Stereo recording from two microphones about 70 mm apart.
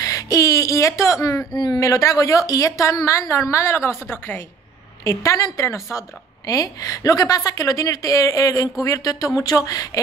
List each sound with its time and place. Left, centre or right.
0.0 s speech: left
1.5 s speech: left
1.8 s a woman's voice: left